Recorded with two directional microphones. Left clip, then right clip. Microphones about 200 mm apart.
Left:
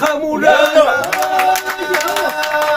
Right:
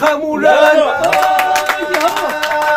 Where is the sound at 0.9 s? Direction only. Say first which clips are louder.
Right 3 dB; 50° left (ahead or behind).